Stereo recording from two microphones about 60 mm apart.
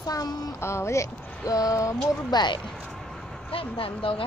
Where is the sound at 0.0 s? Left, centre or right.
Left.